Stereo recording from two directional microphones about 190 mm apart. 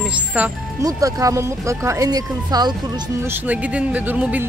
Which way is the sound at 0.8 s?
15° right (ahead or behind).